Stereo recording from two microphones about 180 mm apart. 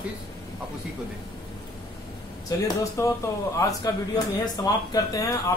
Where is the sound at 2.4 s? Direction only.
20° left (ahead or behind).